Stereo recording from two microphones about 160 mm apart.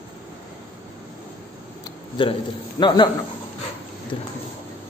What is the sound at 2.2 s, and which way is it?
Speech, 30° left (ahead or behind).